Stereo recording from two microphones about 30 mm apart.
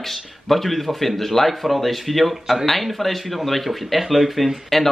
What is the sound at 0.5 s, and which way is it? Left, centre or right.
Speech, centre.